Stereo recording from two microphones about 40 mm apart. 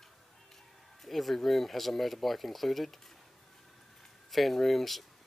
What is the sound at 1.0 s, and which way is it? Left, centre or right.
Speech, centre.